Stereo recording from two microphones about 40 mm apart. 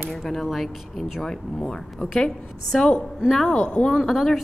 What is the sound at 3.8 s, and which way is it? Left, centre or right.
Speech, centre.